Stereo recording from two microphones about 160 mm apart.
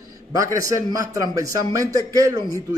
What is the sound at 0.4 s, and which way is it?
A man's voice, 20° right (ahead or behind).